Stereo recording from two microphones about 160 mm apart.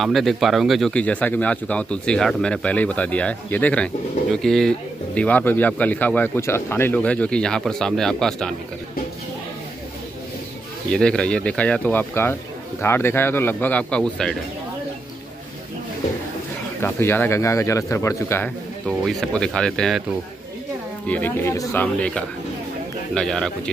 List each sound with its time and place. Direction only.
0.0 s speech: centre (ahead or behind)
10.9 s speech: 5° left (ahead or behind)
16.8 s speech: 15° left (ahead or behind)
18.9 s speech: centre (ahead or behind)
21.1 s speech: 15° left (ahead or behind)